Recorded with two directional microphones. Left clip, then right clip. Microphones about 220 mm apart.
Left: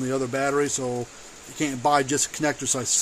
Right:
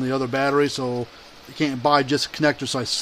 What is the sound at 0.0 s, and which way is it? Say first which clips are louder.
Speech: right 3 dB; 20° right (ahead or behind).